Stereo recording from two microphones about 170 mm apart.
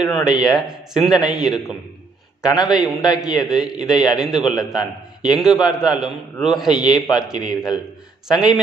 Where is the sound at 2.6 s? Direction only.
25° left (ahead or behind).